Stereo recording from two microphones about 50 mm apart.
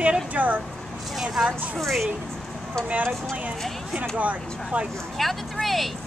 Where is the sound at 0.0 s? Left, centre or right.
Right.